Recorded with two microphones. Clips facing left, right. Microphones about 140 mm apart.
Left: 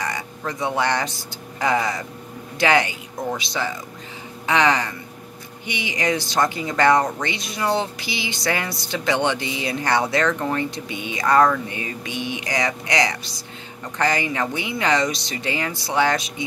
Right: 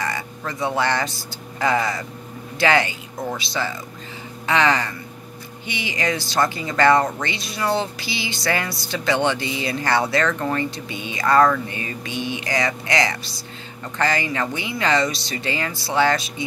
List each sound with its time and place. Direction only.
0.5 s speech: 15° left (ahead or behind)